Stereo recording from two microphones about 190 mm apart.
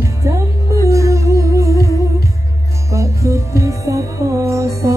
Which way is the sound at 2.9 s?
15° right (ahead or behind).